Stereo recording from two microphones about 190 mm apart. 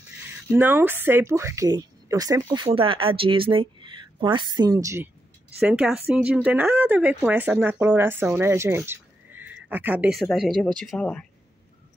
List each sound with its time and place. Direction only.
0.5 s speech: 10° right (ahead or behind)
5.6 s speech: 5° right (ahead or behind)